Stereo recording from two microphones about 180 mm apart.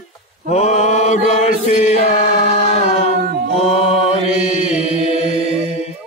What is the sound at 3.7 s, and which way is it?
Mantra, 35° left (ahead or behind).